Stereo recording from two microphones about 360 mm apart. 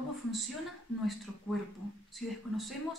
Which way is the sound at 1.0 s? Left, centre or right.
Centre.